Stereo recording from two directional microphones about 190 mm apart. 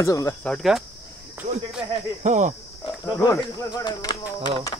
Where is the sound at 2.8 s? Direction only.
15° left (ahead or behind).